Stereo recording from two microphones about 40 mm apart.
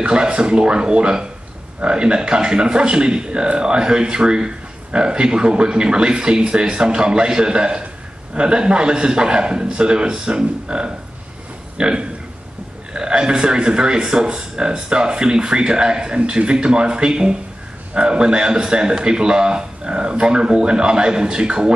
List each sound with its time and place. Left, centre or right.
0.0 s a man's voice: right